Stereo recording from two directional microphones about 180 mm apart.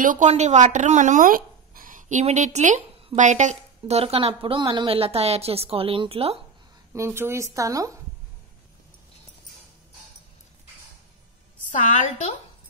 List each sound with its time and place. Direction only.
0.0 s a woman's voice: 45° right (ahead or behind)
6.9 s speech: 15° right (ahead or behind)
11.6 s a woman's voice: 45° left (ahead or behind)